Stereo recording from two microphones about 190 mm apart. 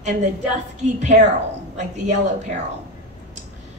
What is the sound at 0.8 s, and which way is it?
Speech, 40° right (ahead or behind).